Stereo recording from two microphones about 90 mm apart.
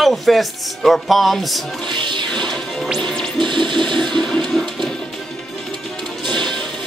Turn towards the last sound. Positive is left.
turn(degrees=5)  # may be behind; listen again after turning